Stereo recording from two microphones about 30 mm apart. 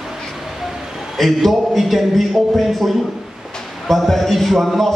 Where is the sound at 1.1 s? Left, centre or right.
Centre.